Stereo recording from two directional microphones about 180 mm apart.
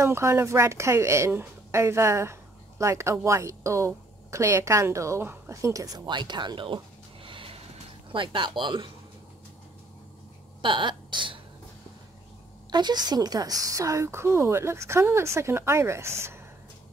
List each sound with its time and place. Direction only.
0.0 s a woman's voice: 15° right (ahead or behind)
7.2 s vehicle: 30° right (ahead or behind)
8.1 s speech: 25° right (ahead or behind)
10.6 s speech: 25° right (ahead or behind)
12.7 s a woman's voice: 25° right (ahead or behind)